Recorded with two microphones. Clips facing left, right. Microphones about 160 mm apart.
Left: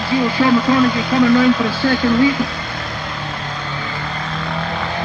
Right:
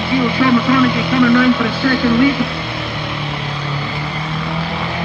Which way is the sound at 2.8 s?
5° right (ahead or behind).